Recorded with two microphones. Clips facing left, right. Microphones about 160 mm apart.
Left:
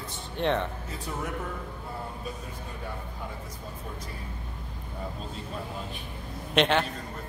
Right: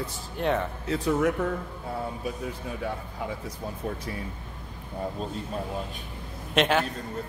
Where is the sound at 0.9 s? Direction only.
85° right.